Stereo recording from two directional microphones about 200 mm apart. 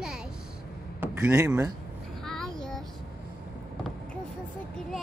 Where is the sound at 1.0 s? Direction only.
5° right (ahead or behind).